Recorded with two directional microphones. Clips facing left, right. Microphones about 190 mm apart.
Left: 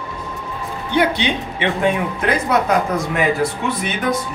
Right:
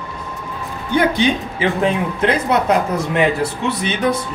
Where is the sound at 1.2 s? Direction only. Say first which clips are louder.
Right 4 dB; 40° right (ahead or behind).